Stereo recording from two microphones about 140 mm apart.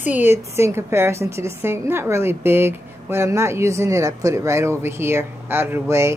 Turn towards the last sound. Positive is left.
turn(degrees=-20)  # may be behind; listen again after turning